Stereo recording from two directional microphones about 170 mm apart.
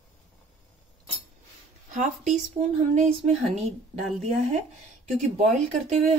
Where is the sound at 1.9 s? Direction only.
45° right (ahead or behind).